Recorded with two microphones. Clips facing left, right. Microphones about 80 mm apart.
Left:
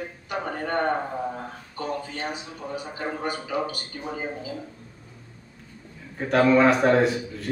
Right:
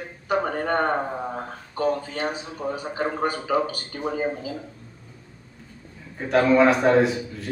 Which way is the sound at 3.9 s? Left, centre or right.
Right.